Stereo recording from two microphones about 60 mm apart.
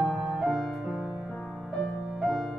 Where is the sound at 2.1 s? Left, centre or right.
Centre.